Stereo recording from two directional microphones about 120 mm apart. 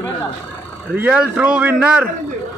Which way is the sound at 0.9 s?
10° right (ahead or behind).